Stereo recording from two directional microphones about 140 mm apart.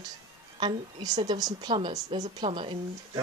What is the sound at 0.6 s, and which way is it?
A woman's voice, 35° right (ahead or behind).